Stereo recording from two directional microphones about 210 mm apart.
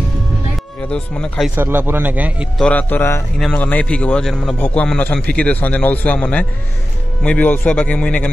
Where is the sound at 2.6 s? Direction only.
5° left (ahead or behind).